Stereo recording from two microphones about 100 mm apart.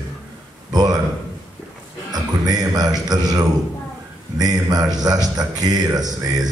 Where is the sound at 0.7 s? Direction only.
40° right (ahead or behind).